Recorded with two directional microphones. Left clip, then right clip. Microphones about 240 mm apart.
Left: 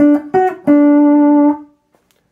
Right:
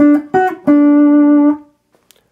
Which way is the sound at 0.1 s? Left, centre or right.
Right.